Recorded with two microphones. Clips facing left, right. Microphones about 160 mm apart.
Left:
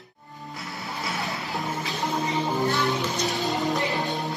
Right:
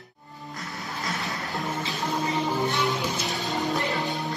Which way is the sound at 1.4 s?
20° left (ahead or behind).